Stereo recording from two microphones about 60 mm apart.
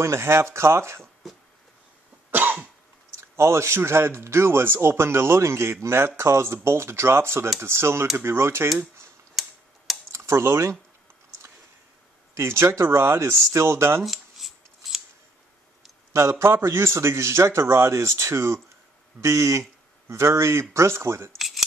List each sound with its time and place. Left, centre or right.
0.0 s a man's voice: right
2.3 s cough: right
3.1 s a man's voice: right
9.3 s tick-tock: centre
10.1 s speech: right
12.4 s a man's voice: right
14.0 s scissors: centre
16.1 s a man's voice: right